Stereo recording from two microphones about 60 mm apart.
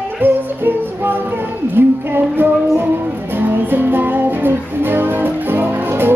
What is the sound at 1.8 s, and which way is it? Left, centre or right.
Music, right.